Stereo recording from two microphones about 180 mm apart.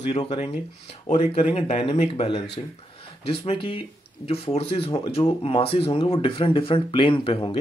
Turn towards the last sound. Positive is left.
turn(degrees=30)  # may be behind; listen again after turning